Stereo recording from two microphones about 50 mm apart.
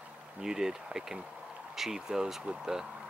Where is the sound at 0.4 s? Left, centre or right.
Centre.